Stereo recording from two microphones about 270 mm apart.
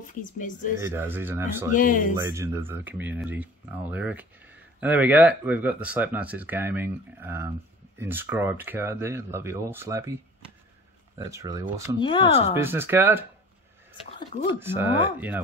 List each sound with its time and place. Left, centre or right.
0.0 s speech: left
0.7 s speech: centre
1.8 s speech: left
2.2 s speech: centre
11.1 s speech: centre
12.0 s speech: centre
12.5 s speech: centre
14.6 s speech: centre